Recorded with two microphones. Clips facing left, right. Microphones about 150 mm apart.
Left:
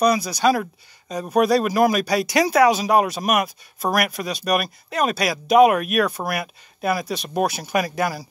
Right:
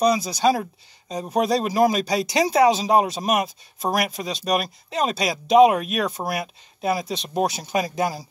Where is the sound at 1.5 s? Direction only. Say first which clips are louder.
Right 1 dB; 25° right (ahead or behind).